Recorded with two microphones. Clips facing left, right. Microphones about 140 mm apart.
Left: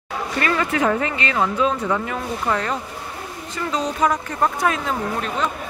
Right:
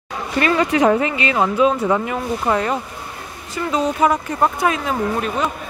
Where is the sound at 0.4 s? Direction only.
20° right (ahead or behind).